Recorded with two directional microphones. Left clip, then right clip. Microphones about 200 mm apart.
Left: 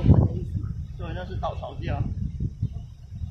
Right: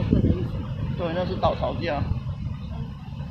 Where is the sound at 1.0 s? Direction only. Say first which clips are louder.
Right 8 dB; 15° right (ahead or behind).